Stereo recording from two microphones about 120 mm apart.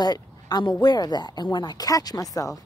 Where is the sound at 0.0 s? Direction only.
35° left (ahead or behind).